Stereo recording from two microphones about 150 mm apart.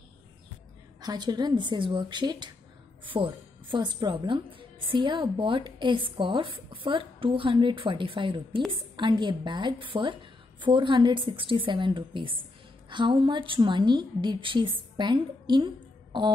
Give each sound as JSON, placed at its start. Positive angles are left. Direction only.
{"t": 1.0, "sound": "a woman's voice", "side_deg": -30}